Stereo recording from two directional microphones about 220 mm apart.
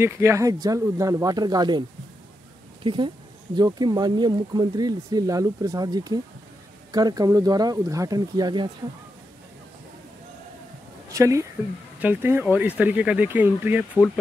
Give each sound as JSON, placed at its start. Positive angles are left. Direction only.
{"t": 0.0, "sound": "speech", "side_deg": -10}
{"t": 11.1, "sound": "speech", "side_deg": -15}